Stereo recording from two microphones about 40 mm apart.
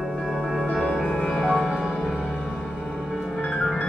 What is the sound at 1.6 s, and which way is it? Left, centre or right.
Music, centre.